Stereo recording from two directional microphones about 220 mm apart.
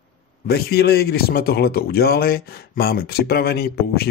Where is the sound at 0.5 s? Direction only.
45° left (ahead or behind).